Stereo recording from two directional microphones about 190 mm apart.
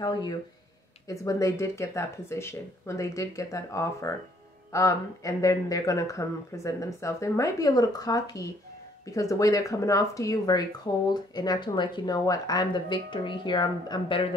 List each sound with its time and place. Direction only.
0.0 s speech: 20° left (ahead or behind)